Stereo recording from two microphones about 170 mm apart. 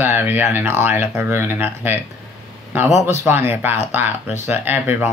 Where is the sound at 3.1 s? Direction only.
15° right (ahead or behind).